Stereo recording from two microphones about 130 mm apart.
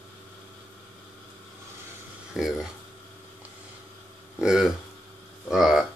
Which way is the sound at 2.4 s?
5° right (ahead or behind).